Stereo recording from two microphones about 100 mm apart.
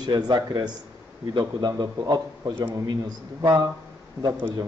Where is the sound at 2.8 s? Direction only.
40° right (ahead or behind).